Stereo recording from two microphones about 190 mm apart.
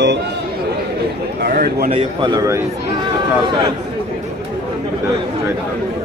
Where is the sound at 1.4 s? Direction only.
55° right (ahead or behind).